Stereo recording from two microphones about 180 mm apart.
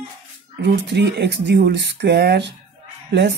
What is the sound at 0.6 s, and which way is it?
Speech, 70° right (ahead or behind).